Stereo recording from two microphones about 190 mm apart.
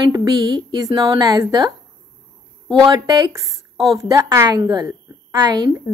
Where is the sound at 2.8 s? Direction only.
20° right (ahead or behind).